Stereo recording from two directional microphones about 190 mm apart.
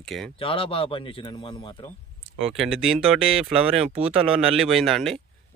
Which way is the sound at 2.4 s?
5° right (ahead or behind).